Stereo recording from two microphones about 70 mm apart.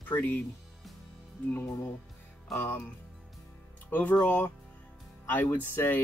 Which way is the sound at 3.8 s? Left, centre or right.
Left.